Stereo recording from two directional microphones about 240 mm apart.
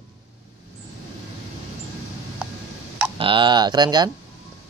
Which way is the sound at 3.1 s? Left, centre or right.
Right.